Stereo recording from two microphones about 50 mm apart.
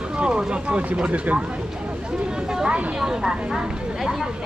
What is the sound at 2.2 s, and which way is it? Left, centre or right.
Speech, centre.